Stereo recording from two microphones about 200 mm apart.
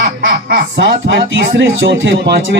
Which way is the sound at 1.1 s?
65° right (ahead or behind).